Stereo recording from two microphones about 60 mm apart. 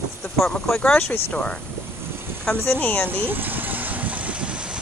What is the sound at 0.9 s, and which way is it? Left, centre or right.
Speech, left.